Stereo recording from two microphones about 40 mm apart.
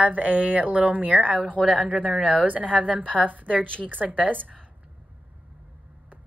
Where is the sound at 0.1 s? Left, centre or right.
Right.